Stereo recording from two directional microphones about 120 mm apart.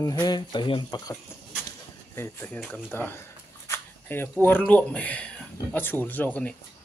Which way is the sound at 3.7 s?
20° left (ahead or behind).